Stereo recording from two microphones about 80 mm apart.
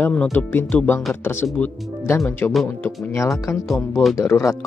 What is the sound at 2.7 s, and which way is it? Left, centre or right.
Speech, left.